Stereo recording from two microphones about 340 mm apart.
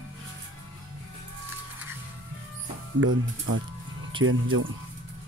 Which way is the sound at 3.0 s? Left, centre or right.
Right.